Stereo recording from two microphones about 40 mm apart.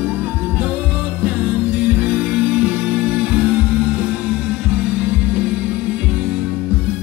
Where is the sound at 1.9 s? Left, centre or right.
Right.